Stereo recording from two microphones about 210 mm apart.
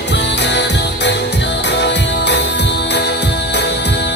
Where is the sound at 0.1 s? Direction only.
55° left (ahead or behind).